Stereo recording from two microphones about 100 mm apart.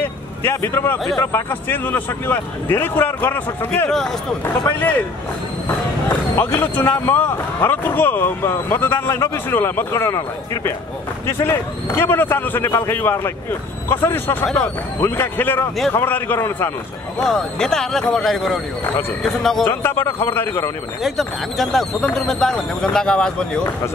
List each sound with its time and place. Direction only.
0.0 s vehicle: 25° left (ahead or behind)
1.2 s speech: 20° left (ahead or behind)
3.9 s speech: 5° left (ahead or behind)
4.6 s speech: 20° left (ahead or behind)
6.3 s speech: 25° left (ahead or behind)
14.4 s speech: 5° left (ahead or behind)
15.0 s speech: 20° left (ahead or behind)
17.2 s speech: 5° left (ahead or behind)
19.7 s speech: 25° left (ahead or behind)
21.0 s speech: centre (ahead or behind)